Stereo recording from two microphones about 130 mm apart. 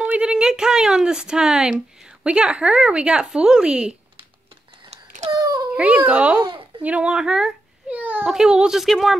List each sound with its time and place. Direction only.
0.0 s speech: 10° right (ahead or behind)
5.3 s a sound: 30° right (ahead or behind)
5.7 s a child's voice: 10° right (ahead or behind)